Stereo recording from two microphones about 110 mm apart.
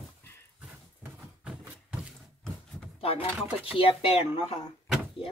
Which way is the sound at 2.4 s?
5° left (ahead or behind).